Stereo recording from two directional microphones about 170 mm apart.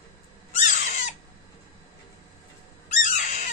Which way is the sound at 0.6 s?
45° left (ahead or behind).